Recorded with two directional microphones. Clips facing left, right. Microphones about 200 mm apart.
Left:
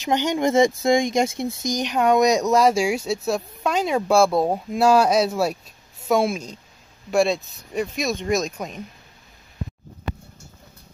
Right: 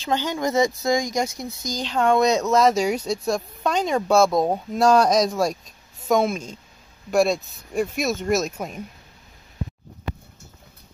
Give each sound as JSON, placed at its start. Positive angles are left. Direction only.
{"t": 0.0, "sound": "speech", "side_deg": 20}